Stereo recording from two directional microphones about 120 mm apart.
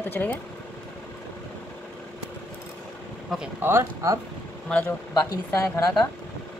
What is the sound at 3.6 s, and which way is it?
Speech, 20° right (ahead or behind).